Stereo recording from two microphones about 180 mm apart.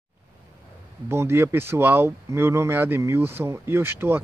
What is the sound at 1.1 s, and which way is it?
Speech, 15° right (ahead or behind).